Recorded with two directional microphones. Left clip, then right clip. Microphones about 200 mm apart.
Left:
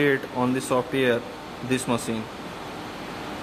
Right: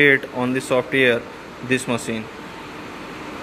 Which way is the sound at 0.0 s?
5° right (ahead or behind).